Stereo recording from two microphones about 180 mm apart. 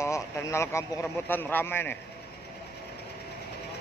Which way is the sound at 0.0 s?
15° left (ahead or behind).